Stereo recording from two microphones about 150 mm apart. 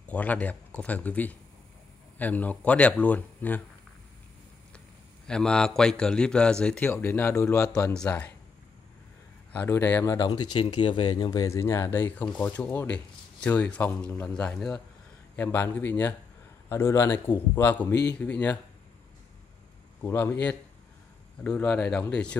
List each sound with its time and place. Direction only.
0.0 s a man's voice: 10° left (ahead or behind)
4.7 s a man's voice: 5° left (ahead or behind)
7.9 s a man's voice: 5° left (ahead or behind)
9.5 s a man's voice: 15° left (ahead or behind)
10.1 s a man's voice: 25° left (ahead or behind); by 18.6 s 10° left (ahead or behind)
20.0 s a man's voice: 15° left (ahead or behind)